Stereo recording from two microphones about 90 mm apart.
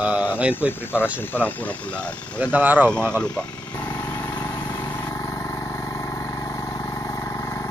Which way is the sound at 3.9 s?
25° left (ahead or behind).